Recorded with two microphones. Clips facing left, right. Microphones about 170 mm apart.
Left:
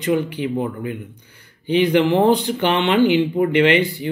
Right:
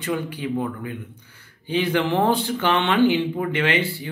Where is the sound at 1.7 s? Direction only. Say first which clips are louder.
Left 6 dB; 20° left (ahead or behind).